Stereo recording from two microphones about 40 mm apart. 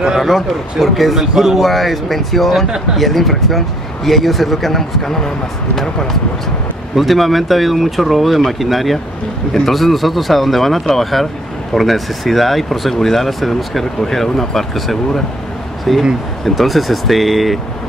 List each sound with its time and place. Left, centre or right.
0.2 s speech: centre
7.0 s speech: centre